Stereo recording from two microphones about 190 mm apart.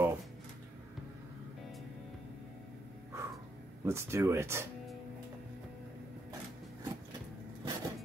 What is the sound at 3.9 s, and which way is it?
Speech, 15° right (ahead or behind).